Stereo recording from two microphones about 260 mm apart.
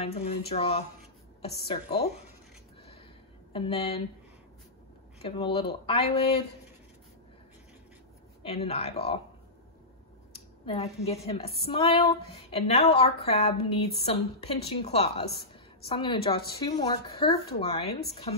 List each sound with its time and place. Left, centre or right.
0.0 s a woman's voice: left
3.5 s a woman's voice: left
5.2 s a woman's voice: left
8.4 s a woman's voice: left
10.3 s a sound: left
11.2 s a woman's voice: left